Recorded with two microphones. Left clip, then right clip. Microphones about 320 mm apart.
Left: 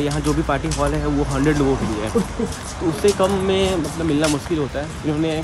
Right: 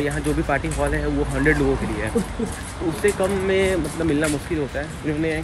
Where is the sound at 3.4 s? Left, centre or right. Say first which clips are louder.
Left 1 dB; centre.